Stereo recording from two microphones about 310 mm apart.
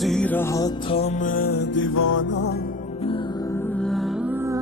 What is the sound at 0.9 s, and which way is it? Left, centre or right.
Music, left.